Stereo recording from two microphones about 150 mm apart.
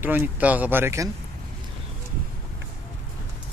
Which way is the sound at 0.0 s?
10° right (ahead or behind).